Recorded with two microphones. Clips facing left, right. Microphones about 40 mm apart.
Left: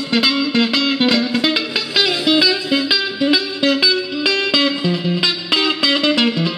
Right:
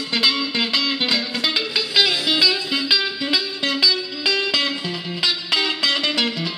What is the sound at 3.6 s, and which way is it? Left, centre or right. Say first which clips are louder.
Music: left 6 dB; left.